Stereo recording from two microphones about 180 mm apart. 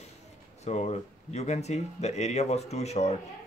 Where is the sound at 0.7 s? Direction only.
40° left (ahead or behind).